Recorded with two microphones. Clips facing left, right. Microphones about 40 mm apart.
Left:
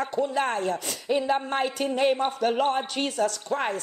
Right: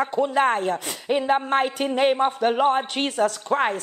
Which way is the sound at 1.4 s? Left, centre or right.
Right.